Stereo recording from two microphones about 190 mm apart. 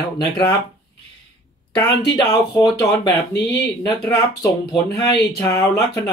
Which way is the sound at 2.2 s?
20° left (ahead or behind).